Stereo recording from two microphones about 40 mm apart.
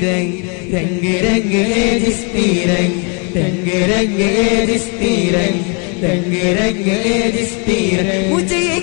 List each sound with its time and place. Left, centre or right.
1.2 s chant: centre
8.5 s music: centre